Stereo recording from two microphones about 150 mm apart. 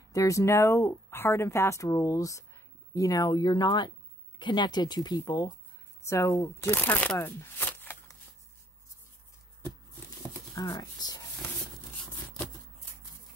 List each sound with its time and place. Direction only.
0.1 s speech: 20° left (ahead or behind)
10.5 s speech: 25° left (ahead or behind)